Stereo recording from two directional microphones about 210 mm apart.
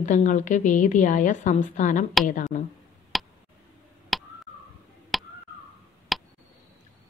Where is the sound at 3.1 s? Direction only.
Centre (ahead or behind).